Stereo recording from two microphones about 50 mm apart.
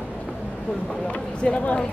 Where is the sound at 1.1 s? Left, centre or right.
Left.